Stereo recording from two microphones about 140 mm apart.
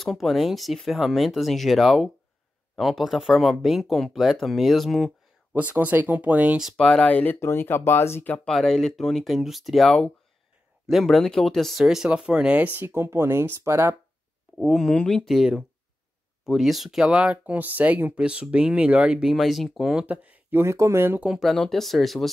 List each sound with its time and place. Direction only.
0.0 s speech: centre (ahead or behind)
5.5 s speech: 10° right (ahead or behind)
6.8 s speech: 5° left (ahead or behind); by 13.9 s 20° right (ahead or behind)
14.6 s speech: centre (ahead or behind)